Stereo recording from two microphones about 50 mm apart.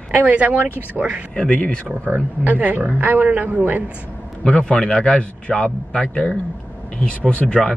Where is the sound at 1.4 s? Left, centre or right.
Left.